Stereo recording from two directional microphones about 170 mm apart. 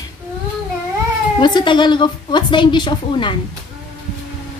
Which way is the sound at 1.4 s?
25° left (ahead or behind).